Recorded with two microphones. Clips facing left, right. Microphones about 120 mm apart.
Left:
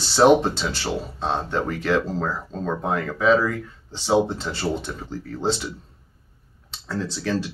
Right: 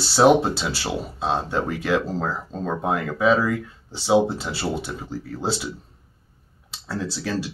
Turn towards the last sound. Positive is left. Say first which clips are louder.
# left 1 dB
turn(degrees=-10)  # may be behind; listen again after turning